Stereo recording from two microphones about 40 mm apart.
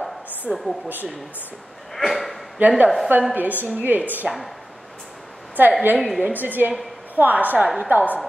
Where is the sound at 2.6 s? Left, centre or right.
Right.